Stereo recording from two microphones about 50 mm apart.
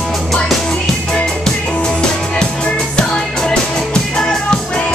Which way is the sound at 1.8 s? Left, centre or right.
Centre.